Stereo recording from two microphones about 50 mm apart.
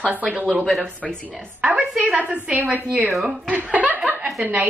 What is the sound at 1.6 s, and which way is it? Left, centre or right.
Speech, centre.